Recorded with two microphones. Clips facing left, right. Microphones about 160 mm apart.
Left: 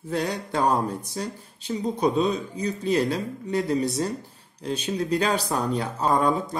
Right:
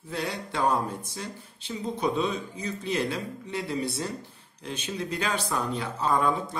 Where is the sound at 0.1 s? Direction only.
45° left (ahead or behind).